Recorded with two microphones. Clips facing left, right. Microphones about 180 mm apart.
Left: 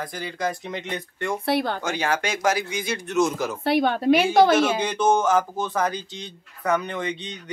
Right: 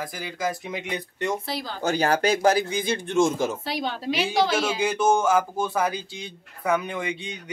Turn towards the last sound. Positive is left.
turn(degrees=-10)  # may be behind; listen again after turning